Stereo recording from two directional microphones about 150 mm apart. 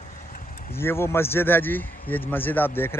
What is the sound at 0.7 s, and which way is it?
A man's voice, 15° left (ahead or behind).